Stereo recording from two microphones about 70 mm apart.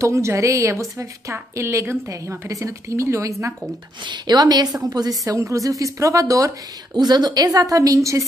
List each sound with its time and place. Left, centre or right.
0.0 s a woman's voice: right
4.0 s a woman's voice: right
4.8 s a woman's voice: right